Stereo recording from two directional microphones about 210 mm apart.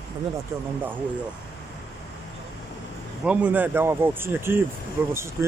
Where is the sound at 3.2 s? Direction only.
5° right (ahead or behind).